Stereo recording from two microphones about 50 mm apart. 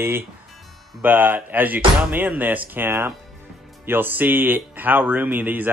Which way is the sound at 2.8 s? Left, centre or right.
Right.